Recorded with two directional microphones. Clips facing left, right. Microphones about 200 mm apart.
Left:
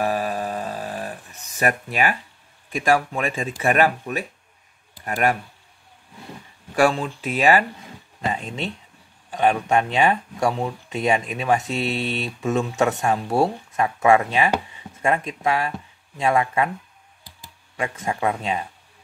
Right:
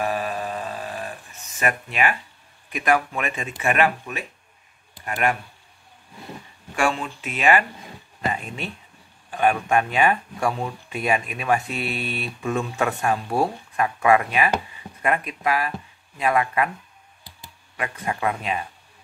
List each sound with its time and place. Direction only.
0.0 s a sound: 40° left (ahead or behind)
1.6 s speech: 40° left (ahead or behind)
2.7 s speech: 30° left (ahead or behind)
6.7 s speech: 35° left (ahead or behind)
8.3 s speech: 25° left (ahead or behind)
11.6 s mantra: 90° left
12.4 s speech: 25° left (ahead or behind)
17.7 s speech: 25° left (ahead or behind)